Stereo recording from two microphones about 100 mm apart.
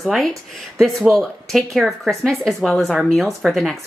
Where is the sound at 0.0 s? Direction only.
Centre (ahead or behind).